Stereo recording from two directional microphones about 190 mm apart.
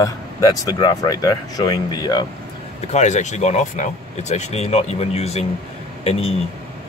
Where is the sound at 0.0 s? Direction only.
20° left (ahead or behind).